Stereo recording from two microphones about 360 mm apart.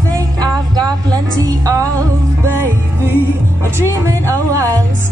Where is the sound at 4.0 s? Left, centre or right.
Centre.